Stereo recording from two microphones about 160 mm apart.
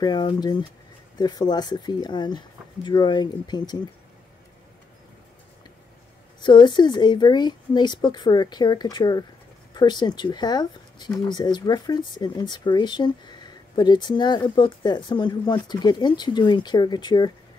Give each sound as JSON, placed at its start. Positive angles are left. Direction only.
{"t": 0.0, "sound": "speech", "side_deg": 30}
{"t": 6.4, "sound": "speech", "side_deg": 30}